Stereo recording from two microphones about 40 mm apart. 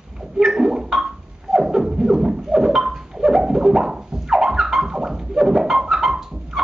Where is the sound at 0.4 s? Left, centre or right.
Centre.